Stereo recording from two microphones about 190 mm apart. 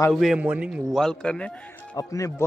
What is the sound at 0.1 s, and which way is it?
Speech, centre (ahead or behind).